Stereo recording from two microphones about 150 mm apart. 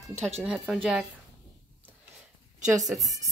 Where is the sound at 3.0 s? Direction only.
25° right (ahead or behind).